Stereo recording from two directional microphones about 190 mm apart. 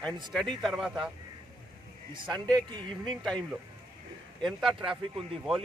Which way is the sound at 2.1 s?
25° right (ahead or behind).